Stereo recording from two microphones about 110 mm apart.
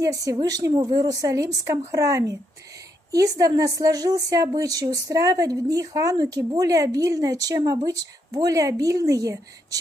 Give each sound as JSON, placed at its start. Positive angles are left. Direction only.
{"t": 0.0, "sound": "a woman's voice", "side_deg": -30}